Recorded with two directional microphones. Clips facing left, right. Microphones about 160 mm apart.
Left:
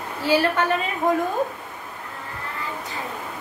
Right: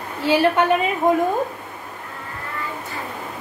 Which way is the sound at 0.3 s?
20° right (ahead or behind).